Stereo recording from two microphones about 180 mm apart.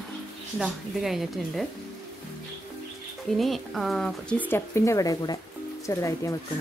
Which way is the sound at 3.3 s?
Centre (ahead or behind).